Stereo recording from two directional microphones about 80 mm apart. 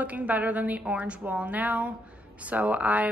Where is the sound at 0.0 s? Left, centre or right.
Centre.